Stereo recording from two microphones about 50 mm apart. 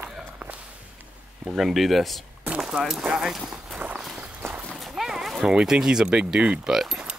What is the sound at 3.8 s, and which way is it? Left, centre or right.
Walk, right.